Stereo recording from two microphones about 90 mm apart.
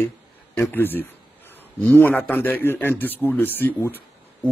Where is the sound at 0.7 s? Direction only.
20° left (ahead or behind).